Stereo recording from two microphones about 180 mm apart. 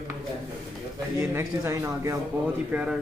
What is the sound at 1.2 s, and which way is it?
Speech, 15° right (ahead or behind).